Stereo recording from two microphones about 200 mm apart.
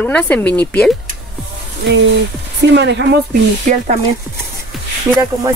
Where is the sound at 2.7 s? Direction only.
60° right (ahead or behind).